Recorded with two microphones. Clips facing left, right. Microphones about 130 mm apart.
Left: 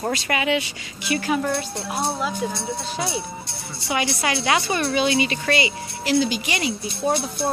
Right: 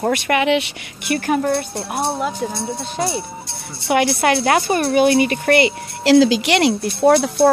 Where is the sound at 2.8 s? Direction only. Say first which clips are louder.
Right 4 dB; centre (ahead or behind).